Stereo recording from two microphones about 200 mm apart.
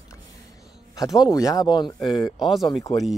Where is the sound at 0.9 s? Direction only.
20° left (ahead or behind).